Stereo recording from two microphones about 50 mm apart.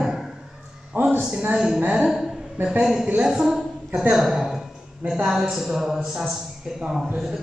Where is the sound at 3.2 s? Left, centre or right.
Centre.